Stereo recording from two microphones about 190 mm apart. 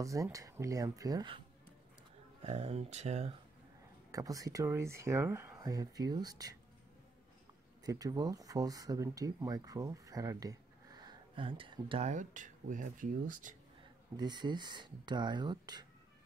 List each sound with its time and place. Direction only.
0.0 s speech: 15° right (ahead or behind)
2.4 s speech: 35° right (ahead or behind)
4.1 s speech: 15° right (ahead or behind)
7.8 s speech: 20° right (ahead or behind)
12.1 s speech: 40° right (ahead or behind)
14.1 s speech: 20° right (ahead or behind)